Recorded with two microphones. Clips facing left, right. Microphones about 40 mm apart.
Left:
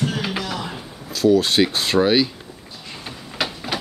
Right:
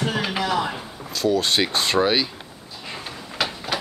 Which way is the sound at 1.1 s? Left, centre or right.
Centre.